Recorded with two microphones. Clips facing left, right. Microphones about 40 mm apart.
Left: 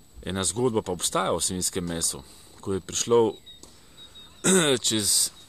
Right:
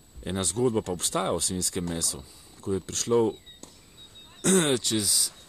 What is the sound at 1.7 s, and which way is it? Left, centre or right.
Speech, left.